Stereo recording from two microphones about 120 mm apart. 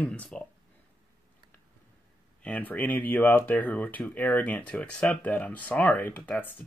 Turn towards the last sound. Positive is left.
turn(degrees=15)  # may be behind; listen again after turning